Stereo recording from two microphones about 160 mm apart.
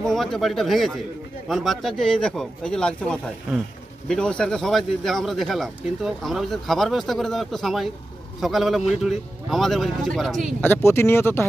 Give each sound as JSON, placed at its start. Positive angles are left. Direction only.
{"t": 0.0, "sound": "speech", "side_deg": 0}
{"t": 10.6, "sound": "speech", "side_deg": 15}